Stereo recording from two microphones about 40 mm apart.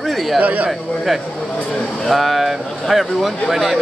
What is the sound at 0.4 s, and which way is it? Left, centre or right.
Speech, right.